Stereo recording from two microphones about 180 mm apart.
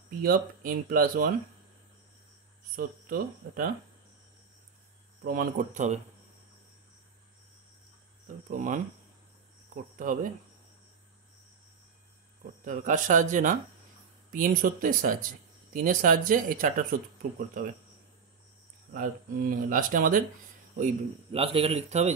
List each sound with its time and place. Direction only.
0.2 s speech: 55° right (ahead or behind)
2.7 s speech: 50° right (ahead or behind)
5.2 s speech: 50° right (ahead or behind)
8.5 s speech: 50° right (ahead or behind)
9.9 s speech: 50° right (ahead or behind)
12.6 s speech: 45° right (ahead or behind)
18.9 s speech: 50° right (ahead or behind)
20.7 s a man's voice: 35° right (ahead or behind)